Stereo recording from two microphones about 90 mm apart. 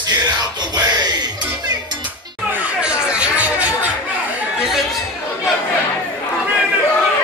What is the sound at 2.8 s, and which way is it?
Music, 10° right (ahead or behind).